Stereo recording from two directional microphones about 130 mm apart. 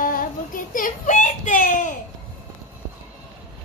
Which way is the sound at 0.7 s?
85° left.